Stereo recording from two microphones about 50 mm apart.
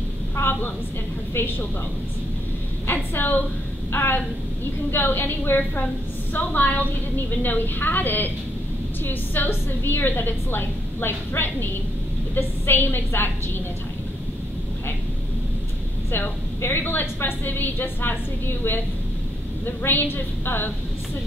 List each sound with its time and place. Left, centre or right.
0.4 s a sound: left
1.3 s a woman's voice: left
2.9 s a woman's voice: left
6.3 s a woman's voice: left
16.1 s a woman's voice: left
19.6 s a woman's voice: left